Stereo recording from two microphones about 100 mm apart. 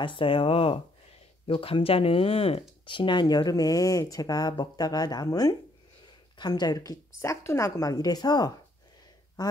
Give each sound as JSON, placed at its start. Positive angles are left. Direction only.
{"t": 0.0, "sound": "speech", "side_deg": 60}
{"t": 2.9, "sound": "speech", "side_deg": 55}
{"t": 7.2, "sound": "speech", "side_deg": 30}